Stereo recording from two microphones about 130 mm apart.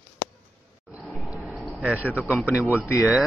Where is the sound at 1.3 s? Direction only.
10° right (ahead or behind).